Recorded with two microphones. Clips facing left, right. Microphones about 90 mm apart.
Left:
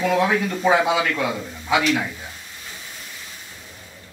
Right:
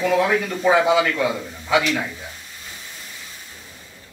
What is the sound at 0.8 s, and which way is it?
A man's voice, 10° left (ahead or behind).